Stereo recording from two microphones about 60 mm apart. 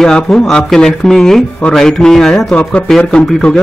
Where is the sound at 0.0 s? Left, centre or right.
Centre.